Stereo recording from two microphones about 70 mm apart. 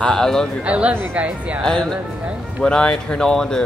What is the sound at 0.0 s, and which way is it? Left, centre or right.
Speech, centre.